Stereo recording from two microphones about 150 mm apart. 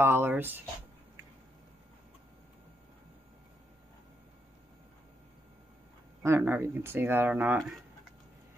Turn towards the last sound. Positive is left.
turn(degrees=-10)  # may be behind; listen again after turning